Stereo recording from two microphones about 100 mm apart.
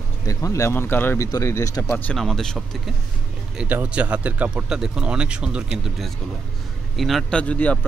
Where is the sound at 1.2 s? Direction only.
30° left (ahead or behind).